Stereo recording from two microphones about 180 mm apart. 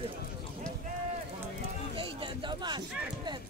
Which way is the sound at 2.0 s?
30° right (ahead or behind).